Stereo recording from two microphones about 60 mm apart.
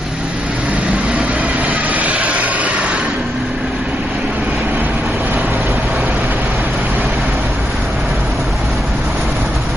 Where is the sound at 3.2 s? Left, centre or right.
Centre.